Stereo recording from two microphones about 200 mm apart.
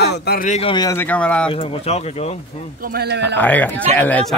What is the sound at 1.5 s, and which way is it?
Speech, 25° left (ahead or behind).